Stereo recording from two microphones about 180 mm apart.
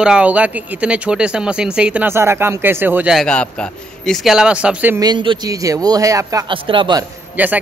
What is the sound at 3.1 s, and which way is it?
A man's voice, 5° left (ahead or behind).